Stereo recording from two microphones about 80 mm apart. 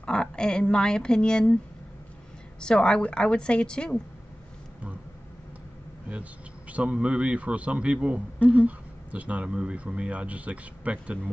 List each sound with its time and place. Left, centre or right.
0.0 s a woman's voice: centre
2.6 s a woman's voice: centre
6.7 s speech: centre